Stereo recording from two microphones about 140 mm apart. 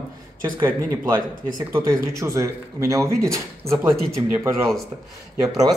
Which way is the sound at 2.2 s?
20° right (ahead or behind).